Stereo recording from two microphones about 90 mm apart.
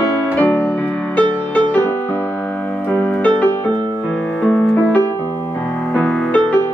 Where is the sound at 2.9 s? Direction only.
15° left (ahead or behind).